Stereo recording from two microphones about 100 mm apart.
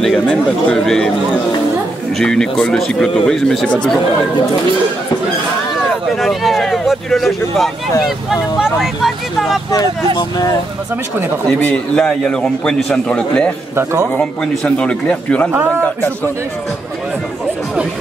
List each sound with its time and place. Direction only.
0.0 s a man's voice: 10° left (ahead or behind)
2.1 s speech: 5° left (ahead or behind)
6.1 s speech: centre (ahead or behind)
10.1 s speech: 45° left (ahead or behind)
11.6 s a man's voice: 10° left (ahead or behind)